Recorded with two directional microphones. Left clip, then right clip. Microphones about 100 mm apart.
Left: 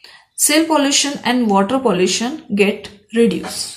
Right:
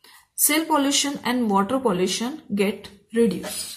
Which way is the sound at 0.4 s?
35° right (ahead or behind).